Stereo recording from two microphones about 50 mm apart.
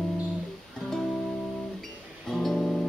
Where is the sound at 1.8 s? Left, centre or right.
Centre.